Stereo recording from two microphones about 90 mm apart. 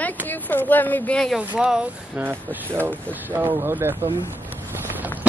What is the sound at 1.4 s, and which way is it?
Speech, 15° right (ahead or behind).